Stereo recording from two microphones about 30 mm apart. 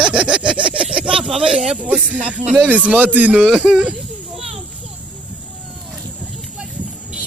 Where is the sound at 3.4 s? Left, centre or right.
Right.